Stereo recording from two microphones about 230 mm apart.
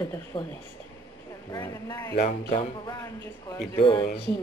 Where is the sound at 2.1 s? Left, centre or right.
Left.